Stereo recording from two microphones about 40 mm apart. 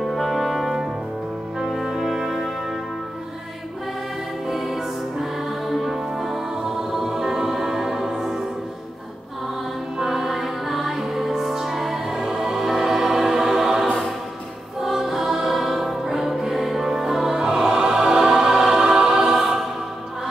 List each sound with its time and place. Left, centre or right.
0.0 s brass instrument: centre
1.6 s music: centre
4.5 s music: centre
9.9 s music: centre